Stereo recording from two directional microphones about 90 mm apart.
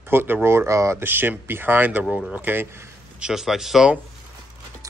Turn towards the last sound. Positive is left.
turn(degrees=-5)  # may be behind; listen again after turning